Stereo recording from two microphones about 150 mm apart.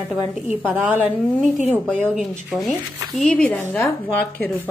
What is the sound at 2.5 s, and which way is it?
Speech, centre (ahead or behind).